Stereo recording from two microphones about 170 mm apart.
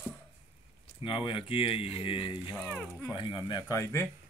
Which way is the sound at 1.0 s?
30° left (ahead or behind).